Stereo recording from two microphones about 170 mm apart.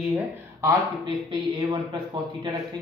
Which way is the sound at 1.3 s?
25° right (ahead or behind).